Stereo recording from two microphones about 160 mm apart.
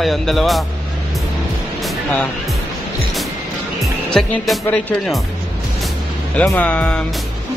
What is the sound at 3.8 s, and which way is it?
Speech, centre (ahead or behind).